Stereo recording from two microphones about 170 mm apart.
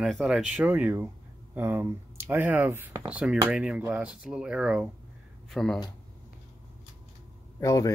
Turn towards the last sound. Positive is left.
turn(degrees=20)  # may be behind; listen again after turning